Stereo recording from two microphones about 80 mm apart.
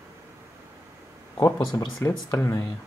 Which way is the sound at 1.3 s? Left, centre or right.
Left.